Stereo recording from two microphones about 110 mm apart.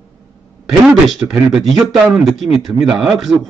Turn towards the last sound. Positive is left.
turn(degrees=0)  # may be behind; listen again after turning